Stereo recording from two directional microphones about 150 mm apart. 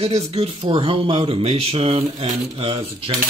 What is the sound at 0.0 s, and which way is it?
Speech, 45° right (ahead or behind).